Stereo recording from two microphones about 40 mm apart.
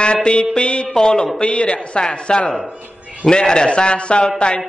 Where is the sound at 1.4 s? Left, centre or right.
Left.